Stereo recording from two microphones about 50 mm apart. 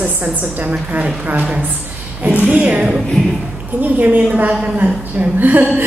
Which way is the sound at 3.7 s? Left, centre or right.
Right.